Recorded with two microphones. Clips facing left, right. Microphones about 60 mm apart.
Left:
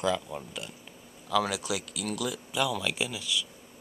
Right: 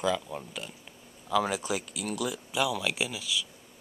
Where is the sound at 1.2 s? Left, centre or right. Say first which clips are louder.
Even; centre.